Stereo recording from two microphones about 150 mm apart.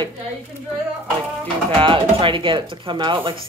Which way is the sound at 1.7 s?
35° right (ahead or behind).